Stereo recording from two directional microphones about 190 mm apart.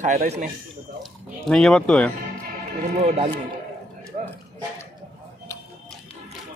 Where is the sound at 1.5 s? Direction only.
5° left (ahead or behind).